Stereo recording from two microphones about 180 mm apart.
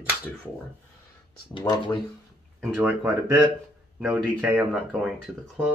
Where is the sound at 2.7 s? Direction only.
5° right (ahead or behind).